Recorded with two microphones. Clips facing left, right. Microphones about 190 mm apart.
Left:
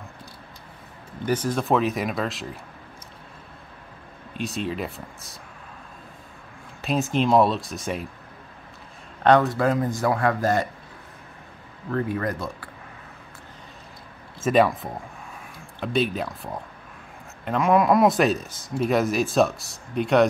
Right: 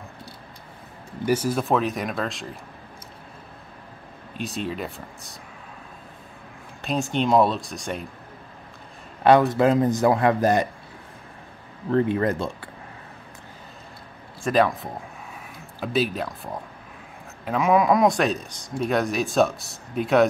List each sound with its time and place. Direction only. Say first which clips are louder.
1.2 s speech: right 2 dB; 10° right (ahead or behind)
4.3 s speech: left 1 dB; centre (ahead or behind)
6.8 s speech: left 1 dB; centre (ahead or behind)
9.2 s a man's voice: right 1 dB; 10° right (ahead or behind)
9.5 s a man's voice: right 4 dB; 20° right (ahead or behind)
11.9 s a man's voice: right 5 dB; 25° right (ahead or behind)
14.4 s speech: left 1 dB; centre (ahead or behind)